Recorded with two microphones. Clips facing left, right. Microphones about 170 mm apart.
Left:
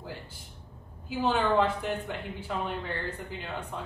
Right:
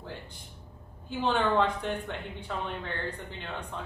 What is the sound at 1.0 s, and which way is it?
A woman's voice, 5° left (ahead or behind).